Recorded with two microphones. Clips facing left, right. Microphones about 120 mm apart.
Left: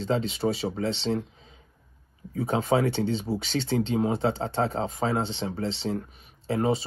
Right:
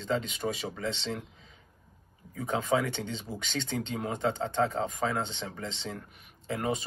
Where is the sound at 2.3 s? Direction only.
45° left (ahead or behind).